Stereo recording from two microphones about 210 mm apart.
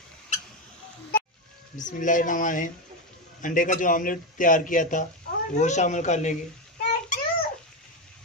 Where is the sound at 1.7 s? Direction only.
35° left (ahead or behind).